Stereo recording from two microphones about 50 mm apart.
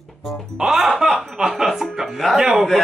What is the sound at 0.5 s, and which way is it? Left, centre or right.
Music, centre.